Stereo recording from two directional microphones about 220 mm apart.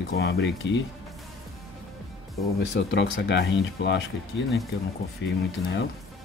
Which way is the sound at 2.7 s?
55° left (ahead or behind).